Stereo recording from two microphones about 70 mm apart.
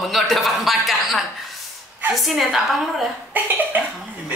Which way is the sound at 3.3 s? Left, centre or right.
Right.